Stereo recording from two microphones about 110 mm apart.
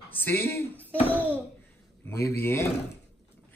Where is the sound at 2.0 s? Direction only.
20° left (ahead or behind).